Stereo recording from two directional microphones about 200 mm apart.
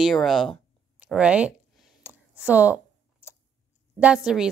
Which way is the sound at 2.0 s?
5° right (ahead or behind).